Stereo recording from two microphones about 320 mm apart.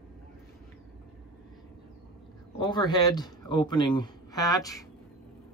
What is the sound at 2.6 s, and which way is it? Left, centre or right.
Speech, centre.